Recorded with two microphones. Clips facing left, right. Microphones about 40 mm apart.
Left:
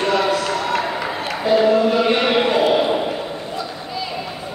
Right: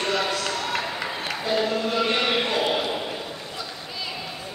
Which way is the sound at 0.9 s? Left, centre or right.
Centre.